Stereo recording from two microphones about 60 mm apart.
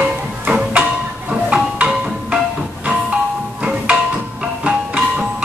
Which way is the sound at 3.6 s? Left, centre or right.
Right.